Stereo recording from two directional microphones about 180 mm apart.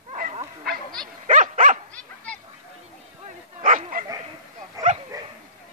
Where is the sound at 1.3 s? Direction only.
45° right (ahead or behind).